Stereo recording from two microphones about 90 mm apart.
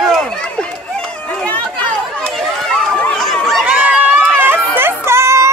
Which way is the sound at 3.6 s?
20° right (ahead or behind).